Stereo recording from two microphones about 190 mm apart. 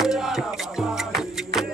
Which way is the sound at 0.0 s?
Centre (ahead or behind).